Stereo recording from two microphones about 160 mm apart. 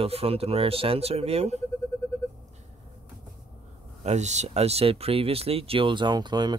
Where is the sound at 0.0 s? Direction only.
40° right (ahead or behind).